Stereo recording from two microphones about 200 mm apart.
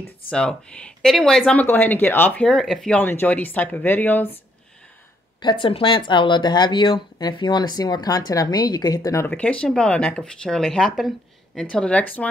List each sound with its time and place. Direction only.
0.3 s speech: 5° left (ahead or behind)
5.4 s speech: 25° left (ahead or behind); by 12.3 s 5° left (ahead or behind)